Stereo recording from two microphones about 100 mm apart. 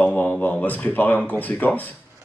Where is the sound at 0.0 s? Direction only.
15° left (ahead or behind).